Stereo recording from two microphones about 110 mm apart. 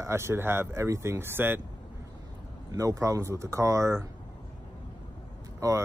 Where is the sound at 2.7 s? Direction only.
30° right (ahead or behind).